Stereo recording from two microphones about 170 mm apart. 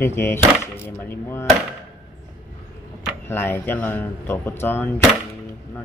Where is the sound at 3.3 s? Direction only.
10° left (ahead or behind).